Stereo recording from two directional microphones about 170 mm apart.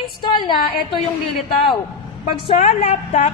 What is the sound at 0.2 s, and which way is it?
Speech, 25° left (ahead or behind).